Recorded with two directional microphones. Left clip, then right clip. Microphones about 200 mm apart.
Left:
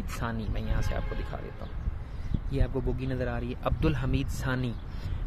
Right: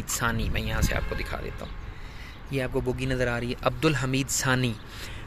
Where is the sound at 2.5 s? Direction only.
15° right (ahead or behind).